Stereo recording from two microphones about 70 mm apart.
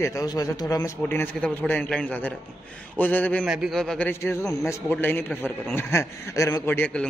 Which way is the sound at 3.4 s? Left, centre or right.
Centre.